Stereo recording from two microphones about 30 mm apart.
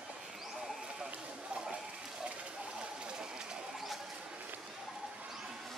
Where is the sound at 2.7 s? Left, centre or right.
Right.